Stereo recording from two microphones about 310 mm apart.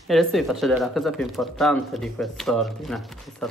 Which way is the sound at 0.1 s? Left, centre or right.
Centre.